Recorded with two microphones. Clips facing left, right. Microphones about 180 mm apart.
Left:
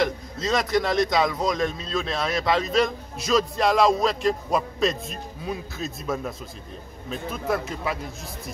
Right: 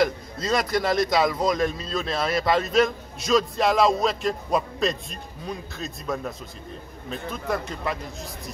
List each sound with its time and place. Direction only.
0.0 s speech: centre (ahead or behind)